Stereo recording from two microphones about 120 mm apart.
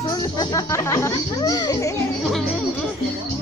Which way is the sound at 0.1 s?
35° left (ahead or behind).